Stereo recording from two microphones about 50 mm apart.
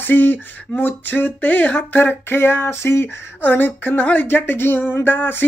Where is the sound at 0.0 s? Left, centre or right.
Left.